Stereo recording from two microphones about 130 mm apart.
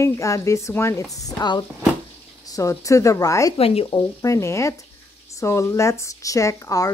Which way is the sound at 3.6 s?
50° left (ahead or behind).